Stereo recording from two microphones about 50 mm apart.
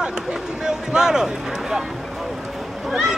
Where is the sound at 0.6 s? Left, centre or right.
Centre.